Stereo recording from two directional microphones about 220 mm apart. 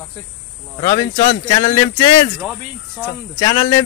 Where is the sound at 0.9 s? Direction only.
40° left (ahead or behind).